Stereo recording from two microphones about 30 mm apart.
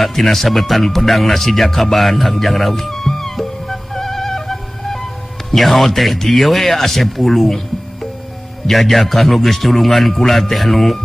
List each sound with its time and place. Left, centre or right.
0.0 s a man's voice: centre
0.8 s music: centre
5.5 s a man's voice: centre
8.6 s a man's voice: centre